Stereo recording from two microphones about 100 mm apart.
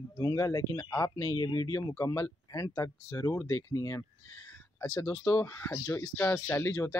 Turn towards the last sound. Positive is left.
turn(degrees=25)  # may be behind; listen again after turning